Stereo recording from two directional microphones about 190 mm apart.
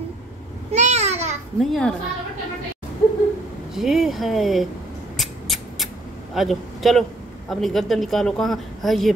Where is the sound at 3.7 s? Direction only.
Centre (ahead or behind).